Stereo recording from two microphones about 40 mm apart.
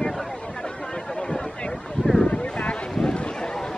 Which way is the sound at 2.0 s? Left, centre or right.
Left.